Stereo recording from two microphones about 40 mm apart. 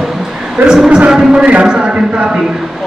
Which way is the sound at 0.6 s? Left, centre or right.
Right.